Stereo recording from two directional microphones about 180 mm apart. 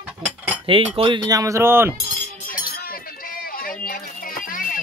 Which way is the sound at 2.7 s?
55° left (ahead or behind).